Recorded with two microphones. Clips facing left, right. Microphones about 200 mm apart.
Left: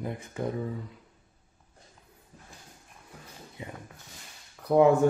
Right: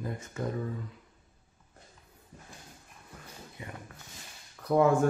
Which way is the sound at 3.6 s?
25° left (ahead or behind).